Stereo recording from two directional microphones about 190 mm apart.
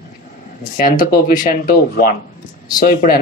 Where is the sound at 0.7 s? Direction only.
50° left (ahead or behind).